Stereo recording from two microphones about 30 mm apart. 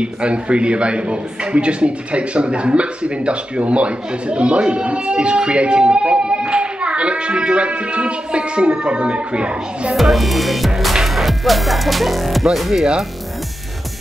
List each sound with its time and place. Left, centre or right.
0.0 s a man's voice: right
10.1 s music: centre